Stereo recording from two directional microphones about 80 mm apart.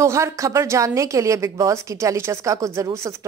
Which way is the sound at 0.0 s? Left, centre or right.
Right.